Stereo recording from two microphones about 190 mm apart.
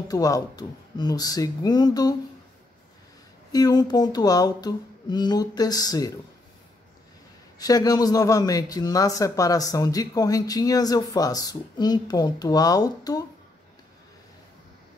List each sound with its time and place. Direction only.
0.1 s a man's voice: 20° left (ahead or behind)
3.5 s a man's voice: 20° left (ahead or behind)
7.5 s a man's voice: 20° left (ahead or behind)